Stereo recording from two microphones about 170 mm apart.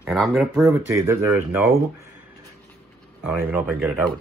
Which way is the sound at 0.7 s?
15° right (ahead or behind).